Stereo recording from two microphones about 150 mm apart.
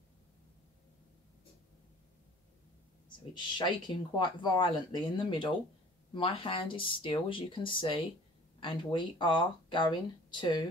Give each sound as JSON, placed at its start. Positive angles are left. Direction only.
{"t": 3.3, "sound": "speech", "side_deg": 30}